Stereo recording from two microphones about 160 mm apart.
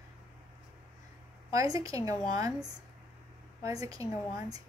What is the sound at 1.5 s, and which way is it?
A woman's voice, 20° right (ahead or behind).